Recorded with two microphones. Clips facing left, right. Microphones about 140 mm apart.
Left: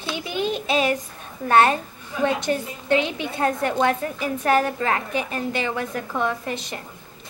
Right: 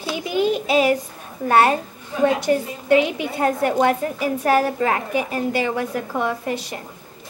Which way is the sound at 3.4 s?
25° right (ahead or behind).